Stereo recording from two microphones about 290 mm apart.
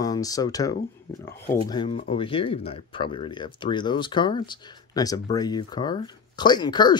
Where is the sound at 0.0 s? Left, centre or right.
Centre.